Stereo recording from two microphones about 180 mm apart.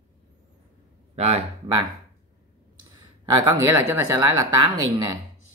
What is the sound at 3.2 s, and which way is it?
A woman's voice, 20° right (ahead or behind).